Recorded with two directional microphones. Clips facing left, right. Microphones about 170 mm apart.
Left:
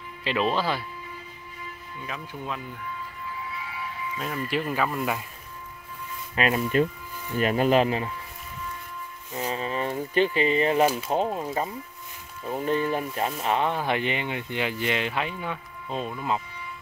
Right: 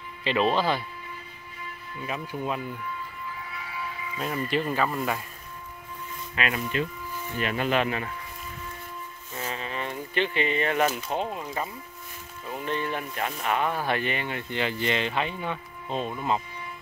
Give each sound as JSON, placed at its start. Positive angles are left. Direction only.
{"t": 0.2, "sound": "speech", "side_deg": 0}
{"t": 2.0, "sound": "speech", "side_deg": -10}
{"t": 4.5, "sound": "speech", "side_deg": 5}
{"t": 6.3, "sound": "speech", "side_deg": 40}
{"t": 9.5, "sound": "speech", "side_deg": 35}